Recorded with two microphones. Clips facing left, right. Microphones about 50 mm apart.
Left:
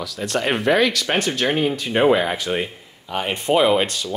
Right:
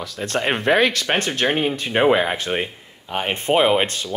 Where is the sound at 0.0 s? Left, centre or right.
Right.